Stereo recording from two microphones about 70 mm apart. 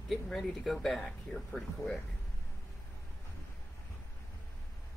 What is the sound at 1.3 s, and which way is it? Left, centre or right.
Speech, left.